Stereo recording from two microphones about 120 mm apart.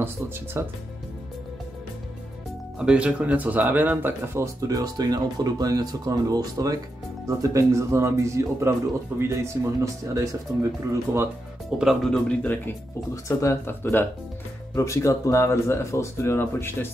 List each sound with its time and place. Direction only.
0.0 s speech: 20° right (ahead or behind)
2.8 s speech: 10° right (ahead or behind); by 10.7 s 25° right (ahead or behind)
11.8 s speech: centre (ahead or behind)
13.1 s speech: 25° left (ahead or behind)